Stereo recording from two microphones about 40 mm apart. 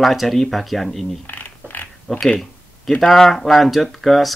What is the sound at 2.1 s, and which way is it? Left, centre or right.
Speech, centre.